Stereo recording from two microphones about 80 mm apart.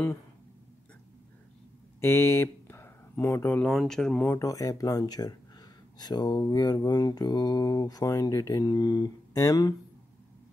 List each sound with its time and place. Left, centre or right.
2.0 s a sound: left
3.5 s speech: centre
4.4 s mantra: left